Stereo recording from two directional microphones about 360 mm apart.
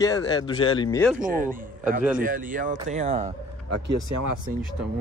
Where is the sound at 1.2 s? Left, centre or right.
Right.